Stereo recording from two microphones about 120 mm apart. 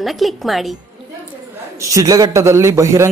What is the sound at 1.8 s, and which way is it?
A man's voice, 30° right (ahead or behind).